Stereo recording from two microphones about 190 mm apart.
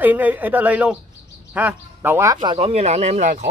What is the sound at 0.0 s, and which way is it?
A man's voice, 10° right (ahead or behind).